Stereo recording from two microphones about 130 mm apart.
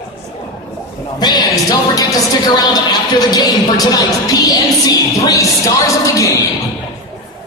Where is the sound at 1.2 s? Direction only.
30° left (ahead or behind).